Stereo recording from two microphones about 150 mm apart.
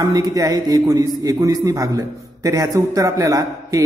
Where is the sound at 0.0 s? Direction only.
25° right (ahead or behind).